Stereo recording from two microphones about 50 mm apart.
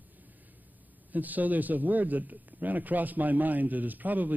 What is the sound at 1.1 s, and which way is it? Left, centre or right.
A man's voice, right.